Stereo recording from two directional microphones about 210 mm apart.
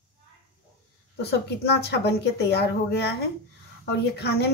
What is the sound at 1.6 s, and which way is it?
A woman's voice, 50° left (ahead or behind).